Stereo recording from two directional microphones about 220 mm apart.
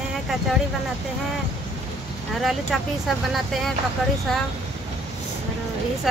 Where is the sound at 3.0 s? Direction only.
Centre (ahead or behind).